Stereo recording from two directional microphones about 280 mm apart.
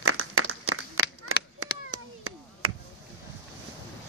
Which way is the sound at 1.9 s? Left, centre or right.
Right.